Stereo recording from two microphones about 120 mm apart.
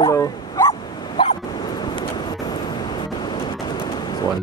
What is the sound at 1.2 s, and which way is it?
Waves, 40° left (ahead or behind).